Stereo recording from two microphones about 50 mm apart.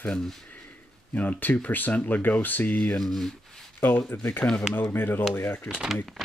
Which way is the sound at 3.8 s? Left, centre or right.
Left.